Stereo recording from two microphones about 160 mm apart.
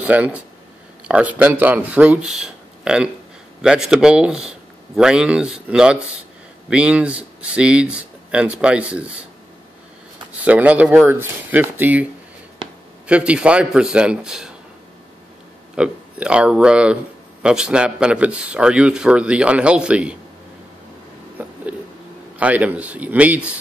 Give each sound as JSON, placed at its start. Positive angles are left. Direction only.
{"t": 0.0, "sound": "speech", "side_deg": -10}
{"t": 10.4, "sound": "speech", "side_deg": -10}
{"t": 15.7, "sound": "speech", "side_deg": -5}
{"t": 22.4, "sound": "speech", "side_deg": -10}